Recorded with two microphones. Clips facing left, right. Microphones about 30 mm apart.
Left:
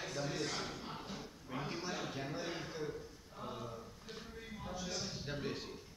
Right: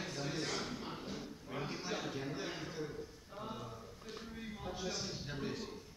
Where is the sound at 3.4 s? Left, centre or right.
Centre.